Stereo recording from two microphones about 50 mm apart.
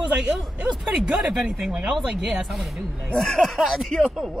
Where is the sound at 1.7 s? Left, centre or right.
Centre.